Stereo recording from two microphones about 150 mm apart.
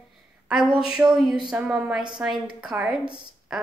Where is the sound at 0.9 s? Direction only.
5° right (ahead or behind).